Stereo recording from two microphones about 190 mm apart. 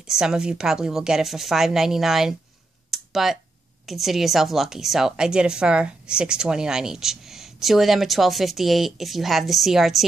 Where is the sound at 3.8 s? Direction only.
Centre (ahead or behind).